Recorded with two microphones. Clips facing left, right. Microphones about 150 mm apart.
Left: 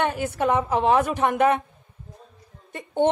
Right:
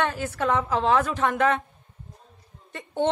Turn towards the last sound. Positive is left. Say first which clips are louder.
# left 4 dB
turn(degrees=15)  # may be behind; listen again after turning